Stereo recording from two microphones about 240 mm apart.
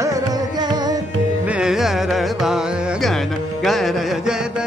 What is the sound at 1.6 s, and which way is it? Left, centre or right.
Carnatic music, centre.